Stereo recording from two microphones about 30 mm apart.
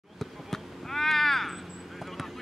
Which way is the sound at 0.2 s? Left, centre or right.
Centre.